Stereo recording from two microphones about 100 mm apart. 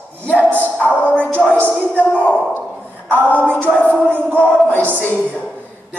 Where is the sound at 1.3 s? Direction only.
20° right (ahead or behind).